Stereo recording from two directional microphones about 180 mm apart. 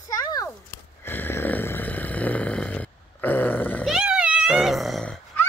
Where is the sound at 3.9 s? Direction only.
5° right (ahead or behind).